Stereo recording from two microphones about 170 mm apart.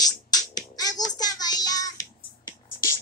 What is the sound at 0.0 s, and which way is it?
Music, 20° left (ahead or behind).